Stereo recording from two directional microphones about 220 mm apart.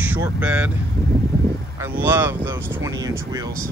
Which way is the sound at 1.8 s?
10° right (ahead or behind).